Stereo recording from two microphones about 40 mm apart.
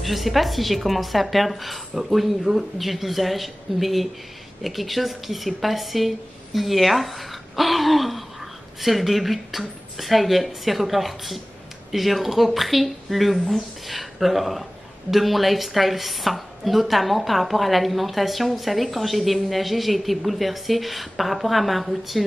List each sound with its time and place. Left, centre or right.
0.0 s speech: centre